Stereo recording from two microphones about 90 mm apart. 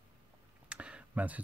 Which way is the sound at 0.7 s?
10° right (ahead or behind).